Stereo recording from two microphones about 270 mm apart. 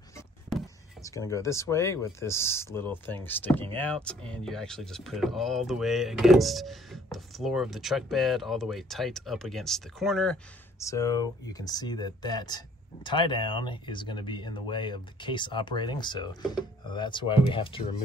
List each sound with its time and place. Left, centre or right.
0.5 s a sound: centre
1.0 s speech: centre
10.8 s speech: centre